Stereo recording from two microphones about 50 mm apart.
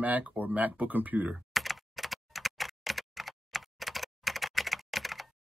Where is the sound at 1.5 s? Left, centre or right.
Centre.